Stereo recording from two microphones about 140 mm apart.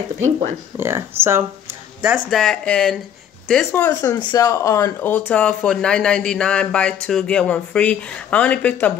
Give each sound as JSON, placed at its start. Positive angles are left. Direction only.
{"t": 0.7, "sound": "speech", "side_deg": -15}
{"t": 2.0, "sound": "speech", "side_deg": -5}
{"t": 4.0, "sound": "speech", "side_deg": 25}